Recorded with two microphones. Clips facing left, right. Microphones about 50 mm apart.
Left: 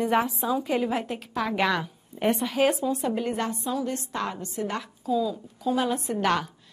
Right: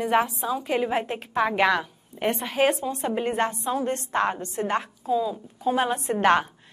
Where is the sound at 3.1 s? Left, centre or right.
Right.